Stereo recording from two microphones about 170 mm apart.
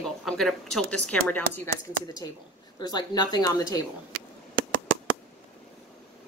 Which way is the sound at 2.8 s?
25° left (ahead or behind).